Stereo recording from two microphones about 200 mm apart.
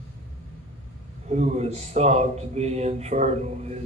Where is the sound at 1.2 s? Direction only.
35° right (ahead or behind).